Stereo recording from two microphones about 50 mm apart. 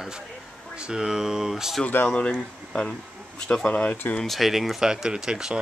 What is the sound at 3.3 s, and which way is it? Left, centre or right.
Speech, centre.